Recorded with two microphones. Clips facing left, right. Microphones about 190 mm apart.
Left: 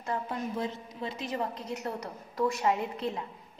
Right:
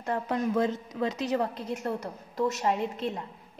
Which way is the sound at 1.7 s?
50° right (ahead or behind).